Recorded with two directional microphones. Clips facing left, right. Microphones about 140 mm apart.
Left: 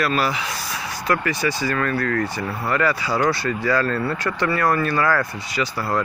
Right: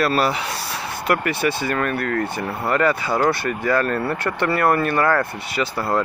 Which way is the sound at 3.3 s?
55° right (ahead or behind).